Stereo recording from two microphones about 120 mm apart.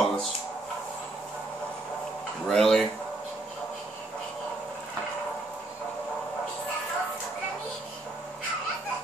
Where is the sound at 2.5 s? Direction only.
5° left (ahead or behind).